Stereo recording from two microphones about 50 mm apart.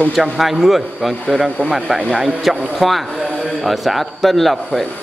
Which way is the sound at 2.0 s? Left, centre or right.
Centre.